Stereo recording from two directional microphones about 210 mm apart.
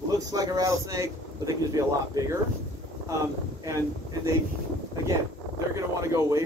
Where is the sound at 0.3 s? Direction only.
15° right (ahead or behind).